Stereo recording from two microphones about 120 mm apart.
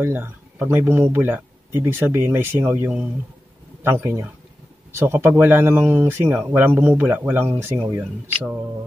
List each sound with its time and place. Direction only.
0.0 s speech: 20° right (ahead or behind)